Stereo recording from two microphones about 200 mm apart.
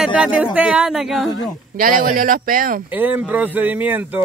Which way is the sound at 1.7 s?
45° right (ahead or behind).